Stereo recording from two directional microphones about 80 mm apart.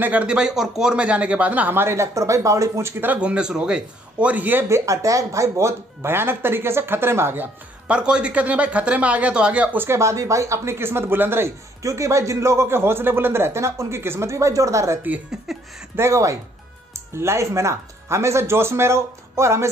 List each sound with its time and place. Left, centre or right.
0.0 s speech: centre; by 2.9 s right
3.0 s speech: centre
4.6 s a man's voice: right
7.9 s speech: centre
9.8 s a man's voice: right
16.0 s a man's voice: right